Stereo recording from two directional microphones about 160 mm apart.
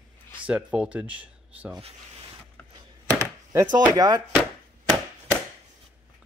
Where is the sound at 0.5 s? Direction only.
10° right (ahead or behind).